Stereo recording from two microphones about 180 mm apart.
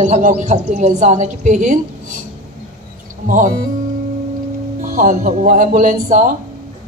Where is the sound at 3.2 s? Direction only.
50° right (ahead or behind).